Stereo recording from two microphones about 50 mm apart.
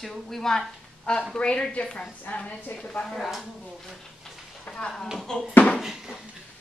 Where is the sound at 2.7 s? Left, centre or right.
Left.